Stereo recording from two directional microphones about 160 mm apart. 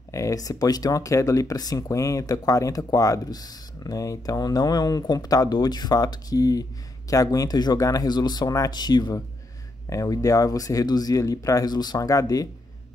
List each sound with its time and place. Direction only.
0.1 s speech: 20° left (ahead or behind)